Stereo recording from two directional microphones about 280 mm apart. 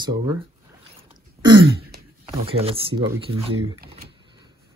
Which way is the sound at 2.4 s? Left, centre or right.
Centre.